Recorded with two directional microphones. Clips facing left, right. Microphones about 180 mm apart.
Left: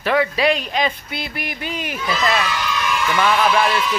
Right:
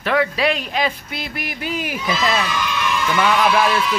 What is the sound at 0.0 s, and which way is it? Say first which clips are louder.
Speech: left 1 dB; centre (ahead or behind).